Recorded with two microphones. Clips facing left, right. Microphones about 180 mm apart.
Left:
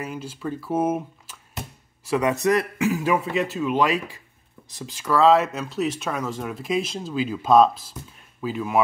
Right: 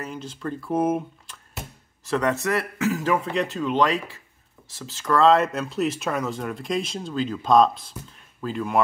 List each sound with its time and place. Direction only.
0.0 s speech: 10° left (ahead or behind)
5.1 s speech: centre (ahead or behind)